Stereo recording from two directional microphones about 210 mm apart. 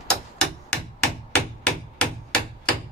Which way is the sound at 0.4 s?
5° left (ahead or behind).